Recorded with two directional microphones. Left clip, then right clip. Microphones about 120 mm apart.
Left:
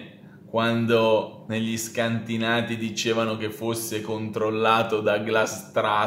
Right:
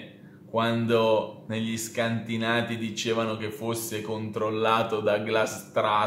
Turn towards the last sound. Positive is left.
turn(degrees=25)  # may be behind; listen again after turning